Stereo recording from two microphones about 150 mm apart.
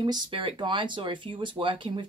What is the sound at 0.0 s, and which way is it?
Speech, 30° right (ahead or behind).